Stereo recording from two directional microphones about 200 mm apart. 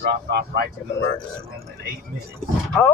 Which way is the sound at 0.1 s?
55° right (ahead or behind).